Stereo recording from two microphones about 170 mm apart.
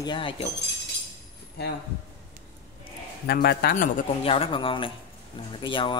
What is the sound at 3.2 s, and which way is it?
Speech, 70° left (ahead or behind).